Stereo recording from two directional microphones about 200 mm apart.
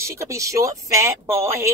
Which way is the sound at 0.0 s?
15° right (ahead or behind).